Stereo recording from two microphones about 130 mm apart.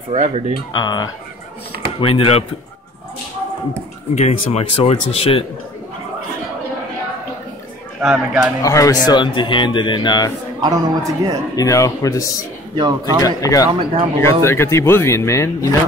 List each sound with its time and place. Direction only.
0.1 s speech: 55° right (ahead or behind)
0.7 s speech: 35° left (ahead or behind)
2.0 s speech: 45° left (ahead or behind)
4.1 s speech: 60° left (ahead or behind)
8.0 s speech: 5° right (ahead or behind)
8.6 s speech: 25° left (ahead or behind)
10.6 s a man's voice: 30° right (ahead or behind)
11.5 s speech: 25° left (ahead or behind)
12.7 s speech: 35° right (ahead or behind)
13.2 s speech: 25° left (ahead or behind)